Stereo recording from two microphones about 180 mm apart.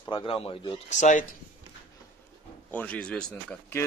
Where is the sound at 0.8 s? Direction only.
45° left (ahead or behind).